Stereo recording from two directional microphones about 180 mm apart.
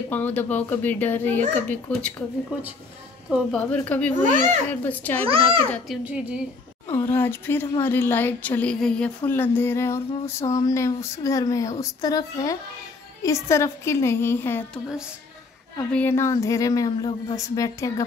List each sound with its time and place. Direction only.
0.1 s speech: 10° left (ahead or behind)
3.3 s speech: 5° left (ahead or behind)
4.2 s a child's voice: 45° right (ahead or behind)
4.6 s speech: 10° left (ahead or behind)
5.2 s a child's voice: 30° right (ahead or behind)
5.9 s a woman's voice: centre (ahead or behind)
7.1 s speech: 10° left (ahead or behind)
15.9 s speech: 10° left (ahead or behind)